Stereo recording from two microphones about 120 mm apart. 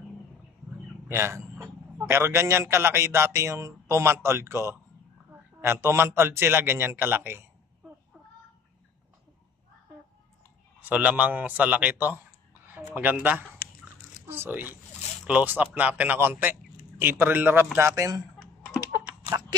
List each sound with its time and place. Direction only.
1.0 s a man's voice: 20° right (ahead or behind)
10.8 s a man's voice: 15° right (ahead or behind)